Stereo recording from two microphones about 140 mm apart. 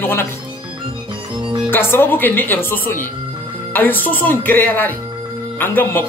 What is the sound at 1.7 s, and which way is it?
A woman's voice, 15° left (ahead or behind).